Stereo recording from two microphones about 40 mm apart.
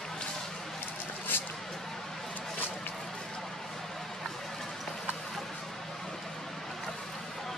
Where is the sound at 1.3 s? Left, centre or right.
Left.